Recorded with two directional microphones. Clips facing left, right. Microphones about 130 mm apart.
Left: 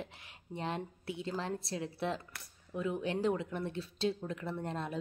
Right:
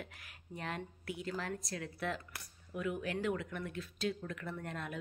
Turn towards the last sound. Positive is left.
turn(degrees=30)  # may be behind; listen again after turning